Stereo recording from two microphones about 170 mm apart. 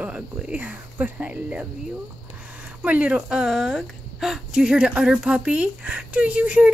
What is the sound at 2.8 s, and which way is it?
A woman's voice, 10° right (ahead or behind).